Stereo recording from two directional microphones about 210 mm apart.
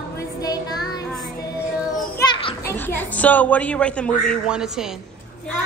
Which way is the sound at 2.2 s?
15° left (ahead or behind).